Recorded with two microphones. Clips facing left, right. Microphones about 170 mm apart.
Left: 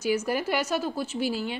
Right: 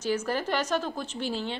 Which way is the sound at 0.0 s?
10° left (ahead or behind).